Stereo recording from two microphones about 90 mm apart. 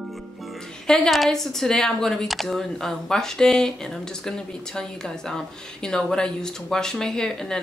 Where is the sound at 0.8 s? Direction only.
5° left (ahead or behind).